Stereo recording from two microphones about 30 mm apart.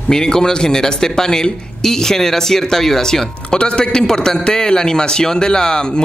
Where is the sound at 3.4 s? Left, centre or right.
Left.